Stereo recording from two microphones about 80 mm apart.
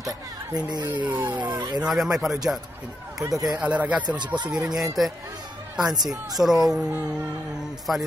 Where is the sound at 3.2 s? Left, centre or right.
Right.